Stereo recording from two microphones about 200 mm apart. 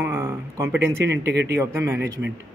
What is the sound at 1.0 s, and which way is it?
Speech, 60° right (ahead or behind).